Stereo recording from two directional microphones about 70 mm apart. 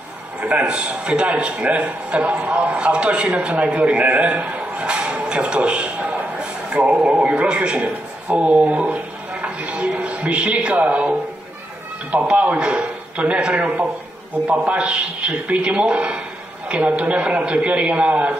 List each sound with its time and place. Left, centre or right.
0.4 s a man's voice: centre